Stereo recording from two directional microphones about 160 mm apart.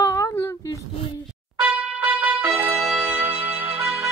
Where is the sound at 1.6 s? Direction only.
10° right (ahead or behind).